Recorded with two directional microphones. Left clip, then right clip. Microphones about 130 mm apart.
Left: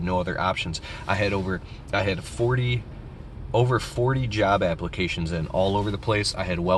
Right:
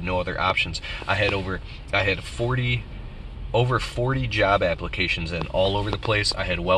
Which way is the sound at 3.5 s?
20° left (ahead or behind).